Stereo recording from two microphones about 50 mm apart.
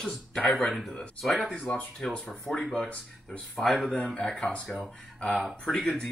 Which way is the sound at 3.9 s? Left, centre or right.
Centre.